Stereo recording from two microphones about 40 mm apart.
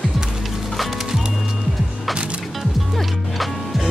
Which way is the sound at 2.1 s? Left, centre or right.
Right.